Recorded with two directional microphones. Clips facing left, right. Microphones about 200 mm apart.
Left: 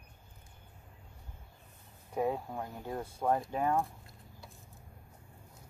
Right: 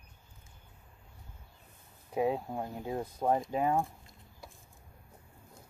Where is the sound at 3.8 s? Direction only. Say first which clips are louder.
Right 1 dB; centre (ahead or behind).